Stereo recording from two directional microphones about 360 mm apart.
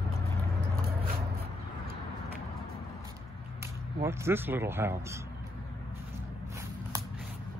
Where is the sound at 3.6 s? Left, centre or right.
Centre.